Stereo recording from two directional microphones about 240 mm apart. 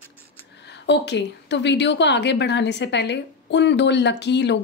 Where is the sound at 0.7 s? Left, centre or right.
Left.